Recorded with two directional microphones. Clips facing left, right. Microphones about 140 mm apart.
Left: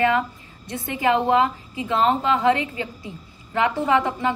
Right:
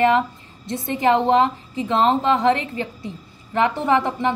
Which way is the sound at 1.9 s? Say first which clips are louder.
Right 2 dB; 25° right (ahead or behind).